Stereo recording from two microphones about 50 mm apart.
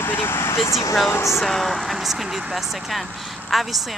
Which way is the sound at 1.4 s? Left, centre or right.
Centre.